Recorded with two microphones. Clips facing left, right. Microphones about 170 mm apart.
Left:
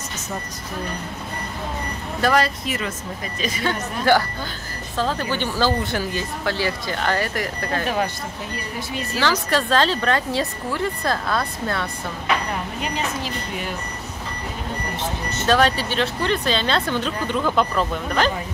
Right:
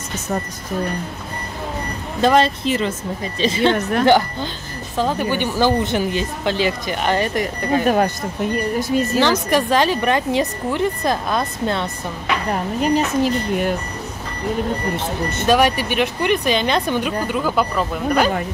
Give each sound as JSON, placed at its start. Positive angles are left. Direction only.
{"t": 2.2, "sound": "speech", "side_deg": -25}
{"t": 7.8, "sound": "speech", "side_deg": -50}
{"t": 9.2, "sound": "speech", "side_deg": -20}
{"t": 12.8, "sound": "speech", "side_deg": -50}
{"t": 15.4, "sound": "speech", "side_deg": -15}